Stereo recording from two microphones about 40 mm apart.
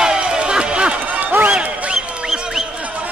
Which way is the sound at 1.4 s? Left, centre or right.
Right.